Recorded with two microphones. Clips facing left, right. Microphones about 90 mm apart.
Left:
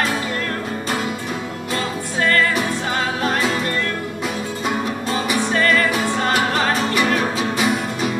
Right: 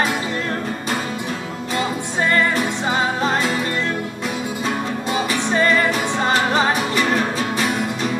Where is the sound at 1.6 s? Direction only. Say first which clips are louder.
Right 3 dB; 15° right (ahead or behind).